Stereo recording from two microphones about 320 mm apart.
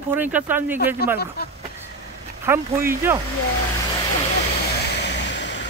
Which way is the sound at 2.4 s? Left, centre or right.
Centre.